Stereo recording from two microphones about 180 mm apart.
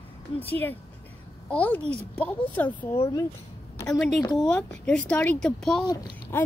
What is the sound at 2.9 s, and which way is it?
Speech, 25° left (ahead or behind).